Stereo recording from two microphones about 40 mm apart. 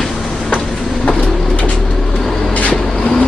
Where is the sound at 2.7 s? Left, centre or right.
Centre.